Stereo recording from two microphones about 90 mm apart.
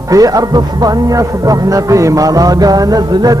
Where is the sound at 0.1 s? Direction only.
40° right (ahead or behind).